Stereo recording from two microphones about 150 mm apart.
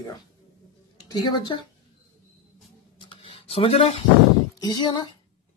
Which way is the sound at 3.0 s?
35° left (ahead or behind).